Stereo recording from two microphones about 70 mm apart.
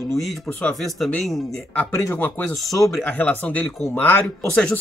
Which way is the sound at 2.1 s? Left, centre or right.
Left.